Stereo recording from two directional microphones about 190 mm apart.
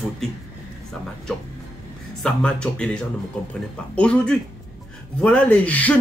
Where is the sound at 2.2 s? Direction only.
5° left (ahead or behind).